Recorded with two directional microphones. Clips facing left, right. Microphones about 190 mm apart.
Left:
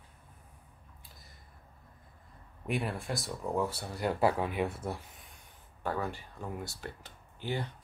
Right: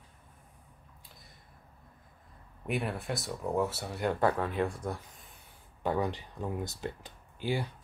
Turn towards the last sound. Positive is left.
turn(degrees=-10)  # may be behind; listen again after turning